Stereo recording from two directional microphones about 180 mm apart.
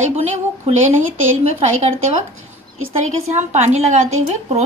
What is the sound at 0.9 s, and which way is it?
Speech, 90° right.